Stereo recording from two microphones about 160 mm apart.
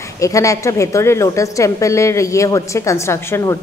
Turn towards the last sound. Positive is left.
turn(degrees=20)  # may be behind; listen again after turning